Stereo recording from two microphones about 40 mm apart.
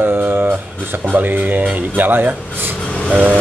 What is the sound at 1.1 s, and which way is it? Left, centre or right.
Speech, right.